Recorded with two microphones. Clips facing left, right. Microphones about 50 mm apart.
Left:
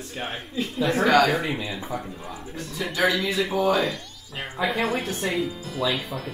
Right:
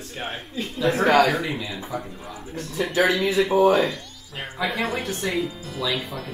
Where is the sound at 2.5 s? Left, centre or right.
Right.